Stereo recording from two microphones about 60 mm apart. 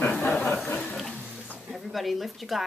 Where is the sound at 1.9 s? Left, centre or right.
Centre.